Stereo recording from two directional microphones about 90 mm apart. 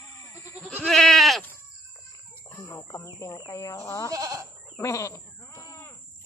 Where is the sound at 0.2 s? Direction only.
30° left (ahead or behind).